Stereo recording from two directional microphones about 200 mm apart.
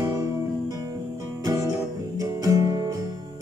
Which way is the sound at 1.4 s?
15° right (ahead or behind).